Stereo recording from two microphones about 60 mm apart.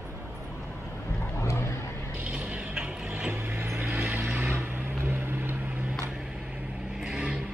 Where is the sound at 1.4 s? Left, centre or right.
Left.